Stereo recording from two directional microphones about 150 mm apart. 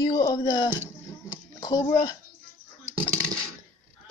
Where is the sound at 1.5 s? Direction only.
30° left (ahead or behind).